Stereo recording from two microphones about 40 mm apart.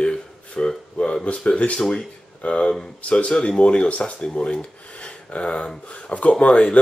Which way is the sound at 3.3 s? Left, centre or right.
Centre.